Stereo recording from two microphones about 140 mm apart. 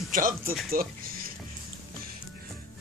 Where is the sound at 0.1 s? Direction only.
80° right.